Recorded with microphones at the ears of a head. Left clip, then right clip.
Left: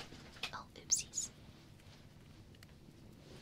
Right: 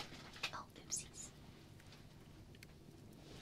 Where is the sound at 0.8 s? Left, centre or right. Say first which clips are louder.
Left 10 dB; left.